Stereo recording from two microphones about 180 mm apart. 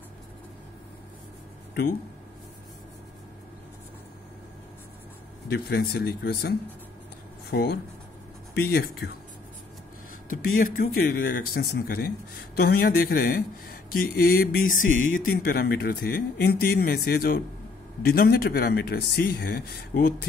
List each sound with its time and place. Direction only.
5.5 s speech: 65° left (ahead or behind)
10.3 s speech: 50° left (ahead or behind)